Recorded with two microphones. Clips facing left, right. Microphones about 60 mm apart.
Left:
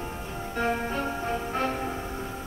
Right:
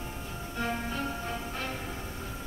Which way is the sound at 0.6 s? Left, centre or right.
Left.